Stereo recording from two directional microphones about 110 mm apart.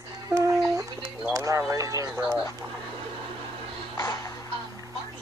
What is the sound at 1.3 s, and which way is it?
Music, 30° right (ahead or behind).